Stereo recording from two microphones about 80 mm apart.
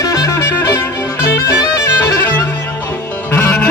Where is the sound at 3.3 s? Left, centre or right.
Centre.